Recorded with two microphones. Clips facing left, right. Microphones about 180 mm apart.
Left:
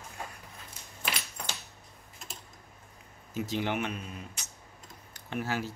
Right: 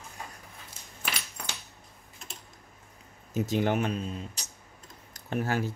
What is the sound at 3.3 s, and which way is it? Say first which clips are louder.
Speech: right 5 dB; 45° right (ahead or behind).